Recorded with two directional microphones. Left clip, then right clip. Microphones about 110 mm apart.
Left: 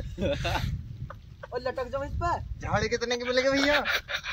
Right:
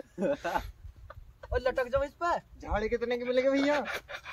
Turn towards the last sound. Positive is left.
turn(degrees=-10)  # may be behind; listen again after turning